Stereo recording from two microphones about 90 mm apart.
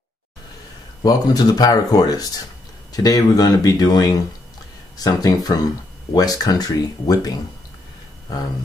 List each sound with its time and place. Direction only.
1.0 s speech: 45° left (ahead or behind)